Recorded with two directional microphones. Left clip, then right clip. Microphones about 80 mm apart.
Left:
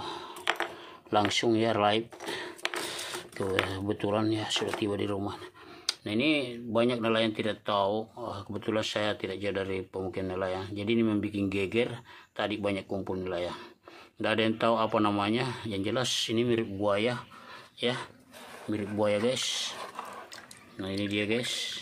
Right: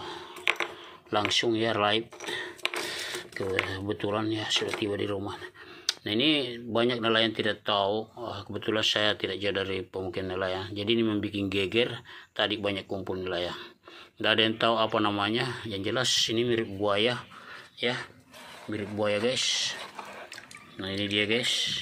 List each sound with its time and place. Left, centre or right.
0.0 s typing: left
1.1 s cash register: left
3.8 s speech: left
6.0 s speech: centre; by 16.6 s left
16.8 s speech: left
17.7 s speech: left
21.0 s speech: centre